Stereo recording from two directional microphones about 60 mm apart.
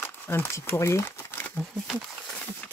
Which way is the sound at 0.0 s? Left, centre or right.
Left.